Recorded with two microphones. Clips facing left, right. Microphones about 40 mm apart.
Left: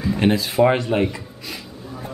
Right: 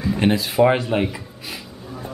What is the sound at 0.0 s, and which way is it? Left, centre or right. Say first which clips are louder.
Speech: even; centre.